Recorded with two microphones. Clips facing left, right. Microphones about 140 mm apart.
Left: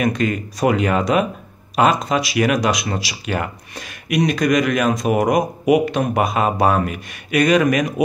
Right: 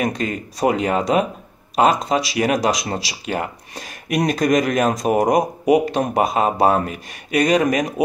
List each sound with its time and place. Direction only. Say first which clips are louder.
0.0 s speech: left 3 dB; 30° right (ahead or behind)